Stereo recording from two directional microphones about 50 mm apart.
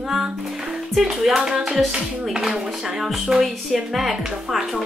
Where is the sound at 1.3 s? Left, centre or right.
Centre.